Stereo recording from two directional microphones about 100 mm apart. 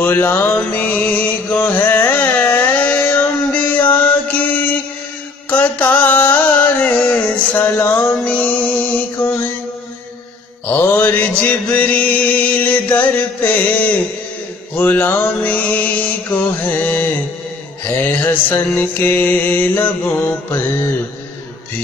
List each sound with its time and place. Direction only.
0.0 s a sound: 20° left (ahead or behind)
5.5 s music: 15° left (ahead or behind)
10.7 s music: 20° left (ahead or behind)
14.8 s mantra: 20° left (ahead or behind)